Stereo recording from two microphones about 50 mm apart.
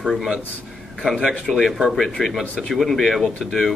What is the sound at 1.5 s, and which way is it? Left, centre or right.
Speech, centre.